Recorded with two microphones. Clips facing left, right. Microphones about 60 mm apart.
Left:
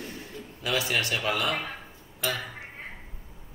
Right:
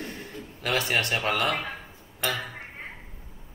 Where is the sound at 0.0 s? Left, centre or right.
Right.